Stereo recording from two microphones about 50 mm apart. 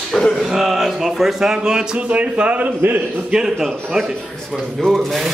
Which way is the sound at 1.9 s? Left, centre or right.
Right.